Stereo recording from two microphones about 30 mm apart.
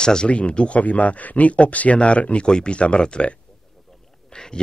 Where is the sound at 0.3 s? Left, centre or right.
Left.